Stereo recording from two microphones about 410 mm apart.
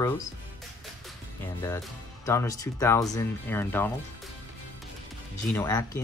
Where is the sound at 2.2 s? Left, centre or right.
Centre.